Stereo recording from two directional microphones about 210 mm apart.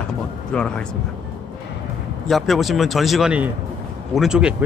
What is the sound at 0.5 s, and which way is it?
Speech, 5° left (ahead or behind).